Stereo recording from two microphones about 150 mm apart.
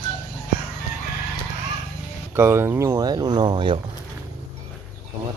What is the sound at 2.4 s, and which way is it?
Speech, 15° right (ahead or behind).